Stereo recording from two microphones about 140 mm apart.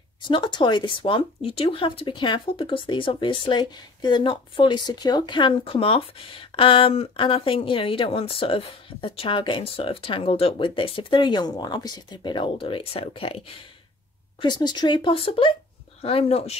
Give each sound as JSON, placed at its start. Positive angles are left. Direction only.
{"t": 0.3, "sound": "speech", "side_deg": 35}